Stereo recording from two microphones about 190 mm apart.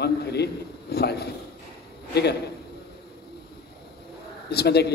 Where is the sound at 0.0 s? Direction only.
60° left (ahead or behind).